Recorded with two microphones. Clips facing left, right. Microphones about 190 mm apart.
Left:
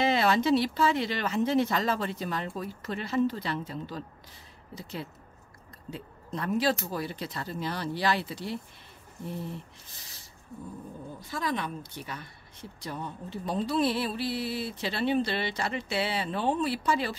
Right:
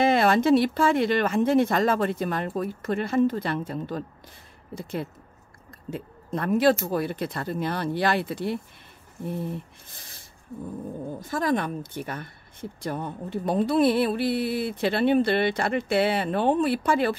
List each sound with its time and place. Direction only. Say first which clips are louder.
0.0 s speech: right 5 dB; 50° right (ahead or behind)
5.9 s speech: right 6 dB; 55° right (ahead or behind)
9.9 s a sound: right 5 dB; 50° right (ahead or behind)
11.1 s speech: right 7 dB; 50° right (ahead or behind)